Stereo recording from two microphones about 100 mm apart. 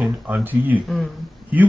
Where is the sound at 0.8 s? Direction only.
Centre (ahead or behind).